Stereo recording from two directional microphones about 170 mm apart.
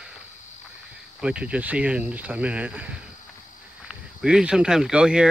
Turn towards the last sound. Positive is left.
turn(degrees=-5)  # may be behind; listen again after turning